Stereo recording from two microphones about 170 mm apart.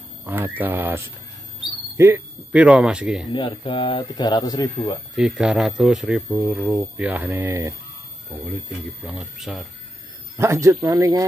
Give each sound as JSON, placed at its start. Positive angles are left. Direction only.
{"t": 0.2, "sound": "speech", "side_deg": -10}
{"t": 3.3, "sound": "speech", "side_deg": 30}
{"t": 5.1, "sound": "speech", "side_deg": -5}
{"t": 9.0, "sound": "speech", "side_deg": 0}
{"t": 10.3, "sound": "speech", "side_deg": -15}